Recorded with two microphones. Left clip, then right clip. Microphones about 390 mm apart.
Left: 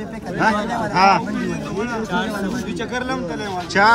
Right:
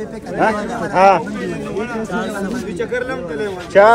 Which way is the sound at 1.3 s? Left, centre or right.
Left.